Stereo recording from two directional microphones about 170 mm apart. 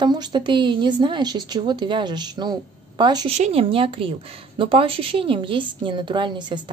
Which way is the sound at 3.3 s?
40° right (ahead or behind).